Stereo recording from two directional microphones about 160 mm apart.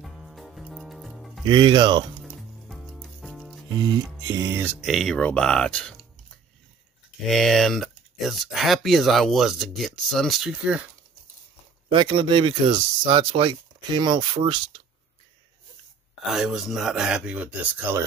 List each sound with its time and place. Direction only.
0.0 s music: centre (ahead or behind)
1.4 s music: 30° right (ahead or behind)
2.7 s music: centre (ahead or behind)
3.7 s music: 25° right (ahead or behind)
4.8 s speech: centre (ahead or behind)
11.9 s speech: 30° right (ahead or behind)
16.3 s speech: centre (ahead or behind)